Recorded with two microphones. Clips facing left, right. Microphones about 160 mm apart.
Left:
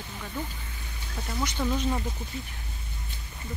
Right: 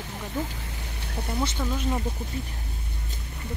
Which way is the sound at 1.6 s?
Centre (ahead or behind).